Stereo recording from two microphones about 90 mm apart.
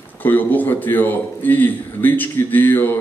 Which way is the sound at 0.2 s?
20° left (ahead or behind).